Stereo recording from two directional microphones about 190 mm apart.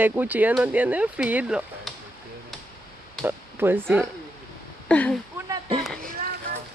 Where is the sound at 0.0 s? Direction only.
10° right (ahead or behind).